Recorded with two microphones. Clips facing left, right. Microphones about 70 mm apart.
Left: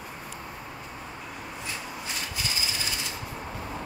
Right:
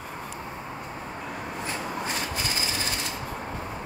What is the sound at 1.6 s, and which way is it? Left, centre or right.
Rub, right.